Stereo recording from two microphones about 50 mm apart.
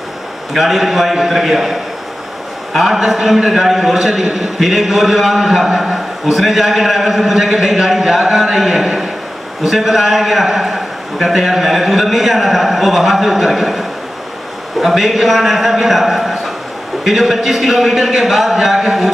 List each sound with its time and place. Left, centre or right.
0.5 s a man's voice: centre